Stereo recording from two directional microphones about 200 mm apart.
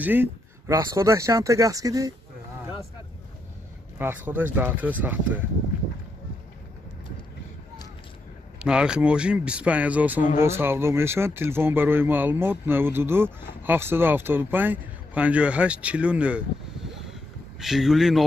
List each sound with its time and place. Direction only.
0.0 s a man's voice: 10° right (ahead or behind)
4.0 s a man's voice: 10° right (ahead or behind)
8.5 s a man's voice: 5° right (ahead or behind)